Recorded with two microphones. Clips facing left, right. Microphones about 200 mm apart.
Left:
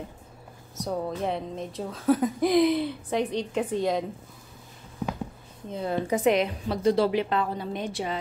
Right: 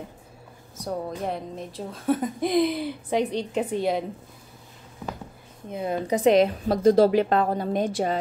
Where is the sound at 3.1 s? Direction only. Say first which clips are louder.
Right 6 dB; 15° right (ahead or behind).